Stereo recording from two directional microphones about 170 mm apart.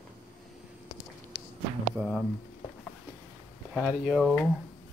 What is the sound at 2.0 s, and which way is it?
Speech, 15° right (ahead or behind).